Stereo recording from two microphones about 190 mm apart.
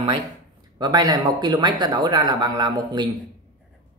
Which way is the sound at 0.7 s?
20° right (ahead or behind).